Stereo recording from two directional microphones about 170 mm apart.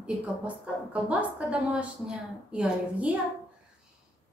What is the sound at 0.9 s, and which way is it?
A woman's voice, 10° right (ahead or behind).